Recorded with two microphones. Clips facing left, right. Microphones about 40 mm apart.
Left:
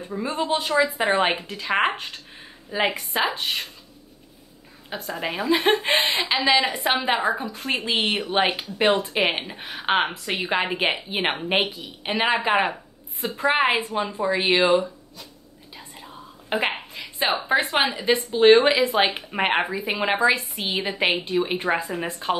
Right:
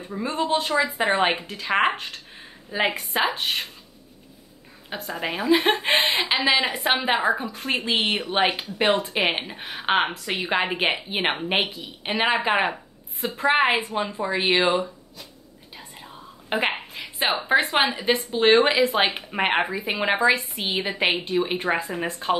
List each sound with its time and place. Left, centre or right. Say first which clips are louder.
0.1 s speech: right 1 dB; centre
2.9 s a woman's voice: even; centre
4.8 s a woman's voice: even; centre
6.0 s a woman's voice: even; centre
15.7 s whispering: left 1 dB; centre
17.5 s a woman's voice: right 3 dB; centre
18.4 s a woman's voice: left 3 dB; centre